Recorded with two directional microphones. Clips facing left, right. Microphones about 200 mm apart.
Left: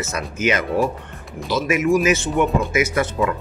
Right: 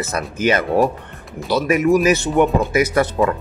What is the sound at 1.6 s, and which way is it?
Speech, 35° right (ahead or behind).